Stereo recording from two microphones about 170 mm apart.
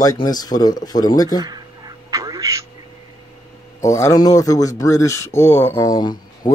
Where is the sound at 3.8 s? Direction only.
15° left (ahead or behind).